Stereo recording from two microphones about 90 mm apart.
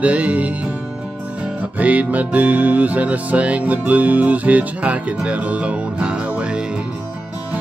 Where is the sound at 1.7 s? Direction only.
15° right (ahead or behind).